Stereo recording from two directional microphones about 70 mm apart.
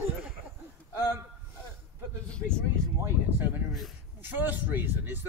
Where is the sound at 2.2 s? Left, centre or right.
Centre.